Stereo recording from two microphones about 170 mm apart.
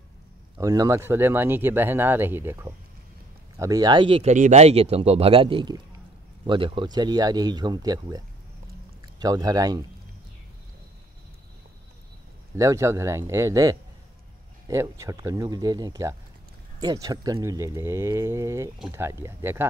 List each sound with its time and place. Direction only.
0.6 s speech: 20° right (ahead or behind)
12.5 s speech: 20° right (ahead or behind)